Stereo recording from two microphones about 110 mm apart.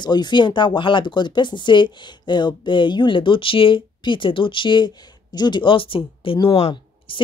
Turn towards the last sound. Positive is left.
turn(degrees=55)  # may be behind; listen again after turning